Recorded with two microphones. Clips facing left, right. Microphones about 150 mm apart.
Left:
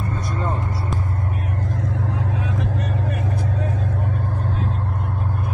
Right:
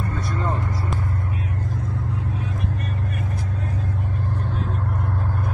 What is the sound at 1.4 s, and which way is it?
Vehicle, 60° left (ahead or behind).